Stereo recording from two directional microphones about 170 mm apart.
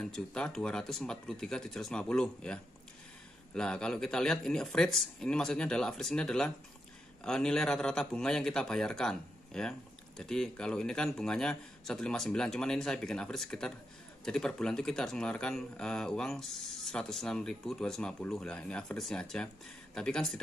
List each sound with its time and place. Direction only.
0.0 s a man's voice: 5° left (ahead or behind)